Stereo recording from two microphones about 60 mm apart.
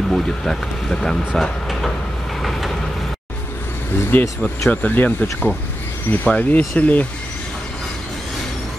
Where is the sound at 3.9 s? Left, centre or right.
Left.